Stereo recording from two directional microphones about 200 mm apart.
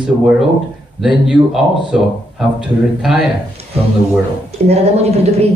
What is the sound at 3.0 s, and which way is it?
Speech, centre (ahead or behind).